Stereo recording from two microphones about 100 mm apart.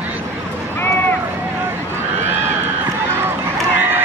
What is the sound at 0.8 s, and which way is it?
Run, 20° left (ahead or behind).